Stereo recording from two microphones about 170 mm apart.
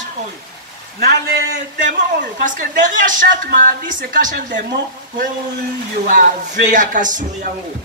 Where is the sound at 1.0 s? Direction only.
75° right (ahead or behind).